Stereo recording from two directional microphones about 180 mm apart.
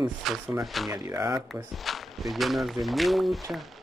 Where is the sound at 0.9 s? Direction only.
20° right (ahead or behind).